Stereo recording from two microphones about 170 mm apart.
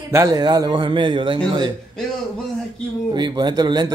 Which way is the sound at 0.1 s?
20° right (ahead or behind).